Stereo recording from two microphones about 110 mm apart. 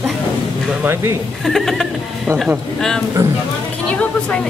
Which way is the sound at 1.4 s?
Centre (ahead or behind).